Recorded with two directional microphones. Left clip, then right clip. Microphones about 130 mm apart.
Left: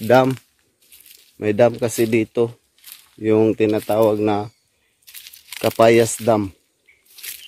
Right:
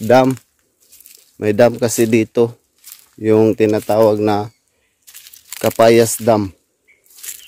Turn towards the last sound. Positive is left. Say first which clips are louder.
# right 4 dB
turn(degrees=-25)  # may be behind; listen again after turning